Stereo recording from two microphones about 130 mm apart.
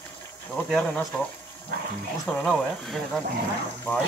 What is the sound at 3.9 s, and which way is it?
Speech, 10° left (ahead or behind).